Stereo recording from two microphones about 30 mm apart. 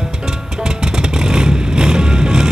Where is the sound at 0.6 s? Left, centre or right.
Right.